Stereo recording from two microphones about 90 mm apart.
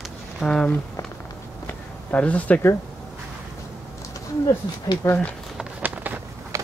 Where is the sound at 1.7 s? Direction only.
20° left (ahead or behind).